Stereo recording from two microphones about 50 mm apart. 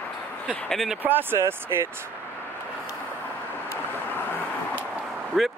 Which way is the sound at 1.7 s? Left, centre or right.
Right.